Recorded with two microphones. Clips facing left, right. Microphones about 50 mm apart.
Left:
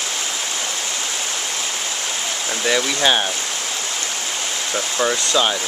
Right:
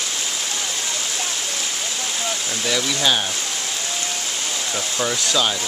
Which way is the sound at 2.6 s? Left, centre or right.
Left.